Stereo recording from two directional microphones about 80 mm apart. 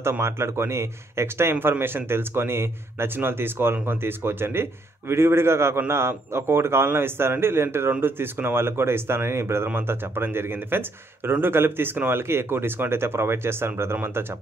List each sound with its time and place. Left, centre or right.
0.2 s speech: right